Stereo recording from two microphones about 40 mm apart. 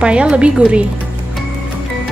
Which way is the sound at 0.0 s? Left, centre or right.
Right.